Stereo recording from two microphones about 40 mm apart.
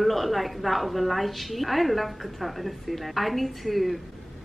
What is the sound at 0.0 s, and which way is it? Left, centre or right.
A woman's voice, centre.